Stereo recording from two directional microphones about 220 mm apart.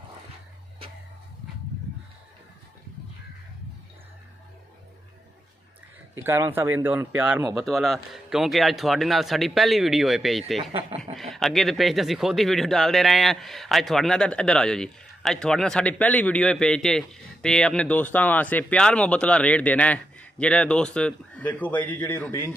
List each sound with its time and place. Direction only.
6.1 s speech: 10° right (ahead or behind)
10.6 s speech: 25° right (ahead or behind)
11.1 s speech: centre (ahead or behind)